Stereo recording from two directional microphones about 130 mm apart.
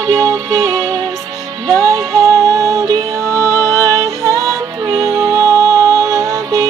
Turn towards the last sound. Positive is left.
turn(degrees=-25)  # may be behind; listen again after turning